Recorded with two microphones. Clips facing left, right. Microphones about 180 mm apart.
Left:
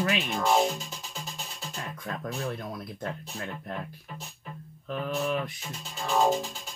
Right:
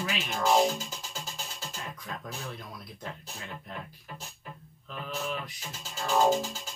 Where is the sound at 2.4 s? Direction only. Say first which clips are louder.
Left 7 dB; 55° left (ahead or behind).